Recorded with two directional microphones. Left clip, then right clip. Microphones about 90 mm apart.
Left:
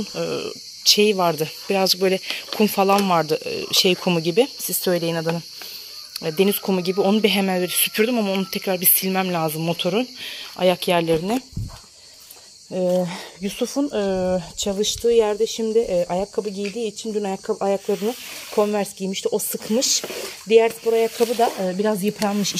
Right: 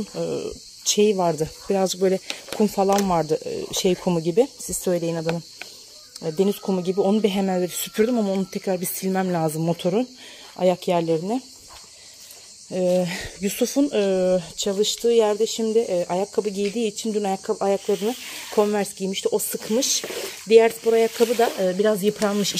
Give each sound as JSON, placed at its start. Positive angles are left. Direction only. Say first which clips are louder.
{"t": 0.1, "sound": "speech", "louder": "left 1 dB", "side_deg": -30}
{"t": 4.8, "sound": "speech", "louder": "left 2 dB", "side_deg": -15}
{"t": 6.2, "sound": "speech", "louder": "left 2 dB", "side_deg": -20}
{"t": 7.8, "sound": "speech", "louder": "left 2 dB", "side_deg": -40}
{"t": 8.5, "sound": "speech", "louder": "left 2 dB", "side_deg": -25}
{"t": 9.1, "sound": "speech", "louder": "even", "side_deg": -50}
{"t": 9.9, "sound": "speech", "louder": "left 1 dB", "side_deg": -30}
{"t": 12.7, "sound": "speech", "louder": "even", "side_deg": 0}
{"t": 13.0, "sound": "speech", "louder": "right 1 dB", "side_deg": -30}
{"t": 13.8, "sound": "speech", "louder": "right 2 dB", "side_deg": -15}
{"t": 15.7, "sound": "speech", "louder": "left 3 dB", "side_deg": 5}
{"t": 16.5, "sound": "speech", "louder": "right 2 dB", "side_deg": -35}
{"t": 17.1, "sound": "speech", "louder": "even", "side_deg": -10}
{"t": 17.5, "sound": "speech", "louder": "left 2 dB", "side_deg": 0}